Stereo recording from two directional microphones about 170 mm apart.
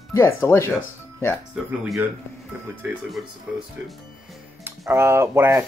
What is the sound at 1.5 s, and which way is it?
Speech, 5° right (ahead or behind).